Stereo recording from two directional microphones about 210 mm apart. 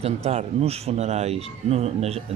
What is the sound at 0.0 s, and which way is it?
Speech, 30° right (ahead or behind).